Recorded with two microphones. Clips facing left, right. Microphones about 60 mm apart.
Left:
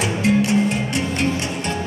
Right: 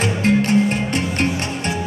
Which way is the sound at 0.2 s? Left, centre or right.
Right.